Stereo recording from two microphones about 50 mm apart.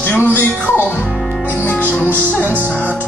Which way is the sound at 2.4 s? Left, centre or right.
Right.